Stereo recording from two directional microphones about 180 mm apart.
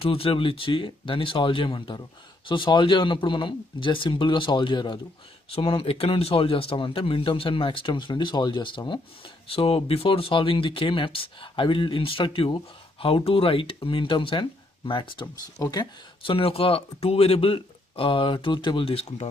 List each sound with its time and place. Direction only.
0.0 s speech: 30° left (ahead or behind)